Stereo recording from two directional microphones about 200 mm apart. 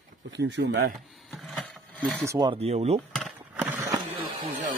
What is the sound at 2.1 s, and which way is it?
Speech, 15° right (ahead or behind).